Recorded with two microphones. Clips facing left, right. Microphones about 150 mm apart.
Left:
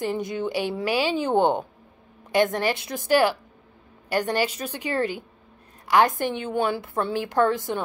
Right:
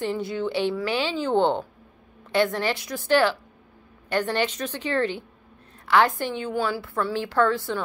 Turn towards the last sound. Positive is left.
turn(degrees=20)  # may be behind; listen again after turning